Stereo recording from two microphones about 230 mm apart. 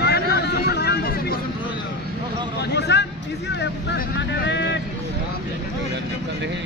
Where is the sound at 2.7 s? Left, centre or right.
Left.